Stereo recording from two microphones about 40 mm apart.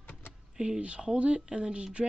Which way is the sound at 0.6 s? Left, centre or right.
Right.